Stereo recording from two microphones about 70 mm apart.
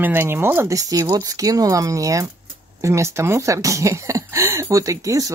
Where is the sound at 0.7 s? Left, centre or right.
Right.